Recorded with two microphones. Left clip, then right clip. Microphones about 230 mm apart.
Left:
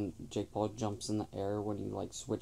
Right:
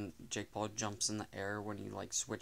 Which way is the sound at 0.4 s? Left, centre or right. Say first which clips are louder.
Left 5 dB; right.